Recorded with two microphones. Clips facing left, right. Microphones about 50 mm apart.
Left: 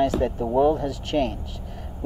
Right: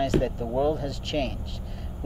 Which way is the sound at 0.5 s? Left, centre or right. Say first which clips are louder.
Left 6 dB; centre.